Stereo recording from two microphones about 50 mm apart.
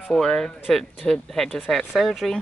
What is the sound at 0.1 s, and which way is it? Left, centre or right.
Speech, centre.